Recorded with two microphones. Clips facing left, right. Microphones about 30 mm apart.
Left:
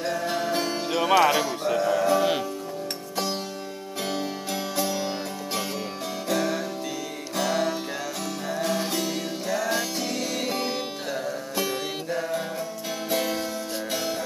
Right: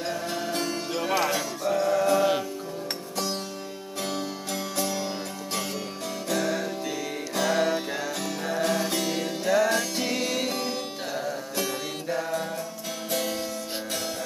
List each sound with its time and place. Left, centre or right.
0.3 s music: centre
1.1 s speech: centre
1.8 s music: centre
4.7 s music: centre
6.2 s music: centre